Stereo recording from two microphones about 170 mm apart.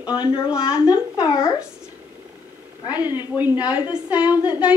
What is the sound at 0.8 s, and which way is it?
Speech, 25° left (ahead or behind).